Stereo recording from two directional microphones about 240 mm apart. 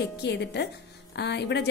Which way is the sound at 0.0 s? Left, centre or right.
Left.